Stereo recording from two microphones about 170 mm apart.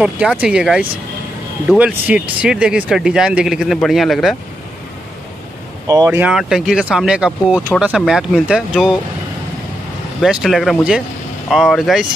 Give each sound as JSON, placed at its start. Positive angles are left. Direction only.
{"t": 0.0, "sound": "speech", "side_deg": -5}
{"t": 5.9, "sound": "speech", "side_deg": -15}
{"t": 6.3, "sound": "speech", "side_deg": -5}
{"t": 10.2, "sound": "speech", "side_deg": 0}